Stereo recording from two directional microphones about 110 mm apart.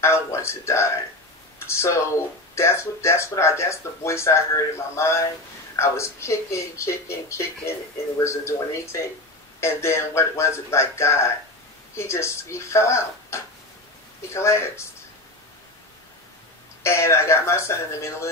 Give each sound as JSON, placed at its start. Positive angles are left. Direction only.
{"t": 0.0, "sound": "speech", "side_deg": 25}
{"t": 16.8, "sound": "speech", "side_deg": 25}